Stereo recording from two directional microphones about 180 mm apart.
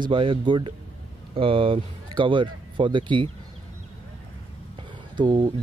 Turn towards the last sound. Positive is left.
turn(degrees=-25)  # may be behind; listen again after turning